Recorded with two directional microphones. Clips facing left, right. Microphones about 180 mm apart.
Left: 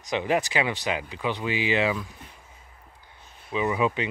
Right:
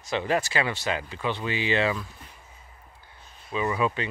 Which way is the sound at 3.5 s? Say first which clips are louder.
Left 1 dB; 15° left (ahead or behind).